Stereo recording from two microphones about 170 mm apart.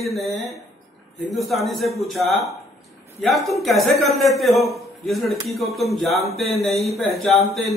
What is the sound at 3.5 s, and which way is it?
Speech, centre (ahead or behind).